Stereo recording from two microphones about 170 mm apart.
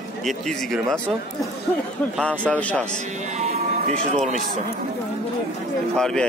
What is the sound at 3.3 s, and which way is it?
Music, 45° right (ahead or behind).